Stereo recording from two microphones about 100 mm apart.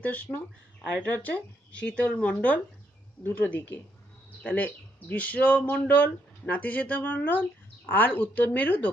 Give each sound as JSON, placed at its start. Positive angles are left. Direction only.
{"t": 0.0, "sound": "speech", "side_deg": 15}